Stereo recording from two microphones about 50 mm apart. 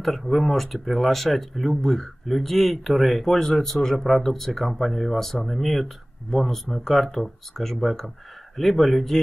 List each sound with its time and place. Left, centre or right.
0.0 s speech: centre